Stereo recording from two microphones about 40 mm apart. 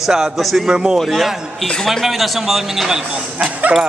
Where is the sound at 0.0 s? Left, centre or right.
Centre.